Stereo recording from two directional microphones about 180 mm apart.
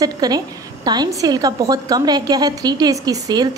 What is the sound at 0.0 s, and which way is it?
A woman's voice, 20° right (ahead or behind).